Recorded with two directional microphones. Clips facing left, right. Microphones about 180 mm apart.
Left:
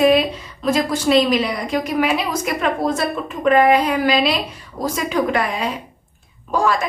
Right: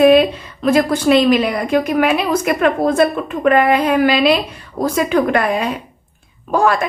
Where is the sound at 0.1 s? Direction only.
60° right (ahead or behind).